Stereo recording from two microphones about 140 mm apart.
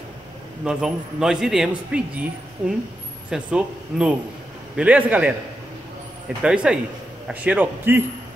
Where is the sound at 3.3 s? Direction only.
5° right (ahead or behind).